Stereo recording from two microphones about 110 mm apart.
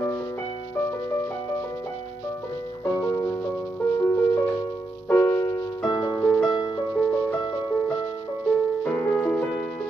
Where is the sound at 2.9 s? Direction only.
35° left (ahead or behind).